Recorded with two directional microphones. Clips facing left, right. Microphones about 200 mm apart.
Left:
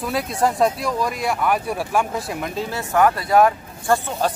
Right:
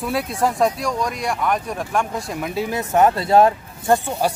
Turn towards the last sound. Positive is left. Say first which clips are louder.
# right 1 dB
turn(degrees=-10)  # may be behind; listen again after turning